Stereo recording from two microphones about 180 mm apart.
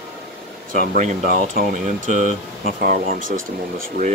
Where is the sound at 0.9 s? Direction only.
40° right (ahead or behind).